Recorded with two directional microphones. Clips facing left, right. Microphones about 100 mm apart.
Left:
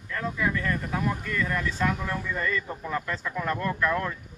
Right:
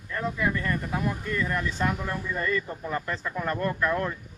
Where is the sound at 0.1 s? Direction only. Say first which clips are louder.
Even; 30° right (ahead or behind).